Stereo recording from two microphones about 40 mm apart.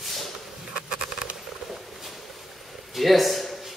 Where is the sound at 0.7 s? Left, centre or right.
Centre.